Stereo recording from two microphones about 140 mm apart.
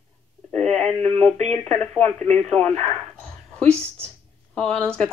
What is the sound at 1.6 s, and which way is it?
Speech, 10° left (ahead or behind).